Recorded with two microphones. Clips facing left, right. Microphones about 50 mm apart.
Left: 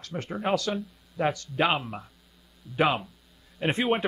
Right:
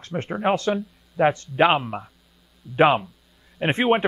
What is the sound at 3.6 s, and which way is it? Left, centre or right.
Speech, right.